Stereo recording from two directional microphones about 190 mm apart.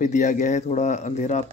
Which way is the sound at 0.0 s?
40° left (ahead or behind).